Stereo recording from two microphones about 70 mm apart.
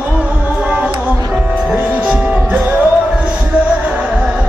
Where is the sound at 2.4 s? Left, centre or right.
Right.